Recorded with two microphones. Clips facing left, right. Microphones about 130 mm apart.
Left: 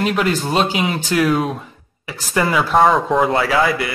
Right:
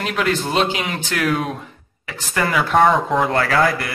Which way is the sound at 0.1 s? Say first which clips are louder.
Left 2 dB; 30° left (ahead or behind).